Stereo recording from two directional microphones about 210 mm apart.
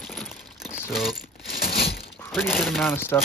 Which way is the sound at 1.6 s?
45° left (ahead or behind).